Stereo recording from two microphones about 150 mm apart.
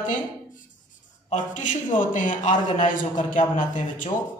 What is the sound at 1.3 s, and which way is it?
A man's voice, 55° left (ahead or behind).